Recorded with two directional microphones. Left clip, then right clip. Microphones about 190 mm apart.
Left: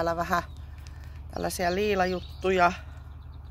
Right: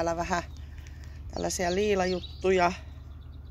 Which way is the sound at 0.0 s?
20° left (ahead or behind).